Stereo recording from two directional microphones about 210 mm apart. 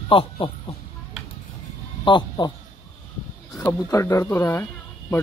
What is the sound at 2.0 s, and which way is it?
Speech, 20° left (ahead or behind).